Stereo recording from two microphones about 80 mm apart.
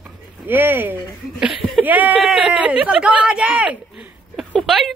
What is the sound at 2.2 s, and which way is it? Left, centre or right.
Speech, centre.